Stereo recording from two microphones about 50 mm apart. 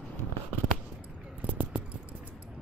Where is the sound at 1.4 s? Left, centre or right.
Right.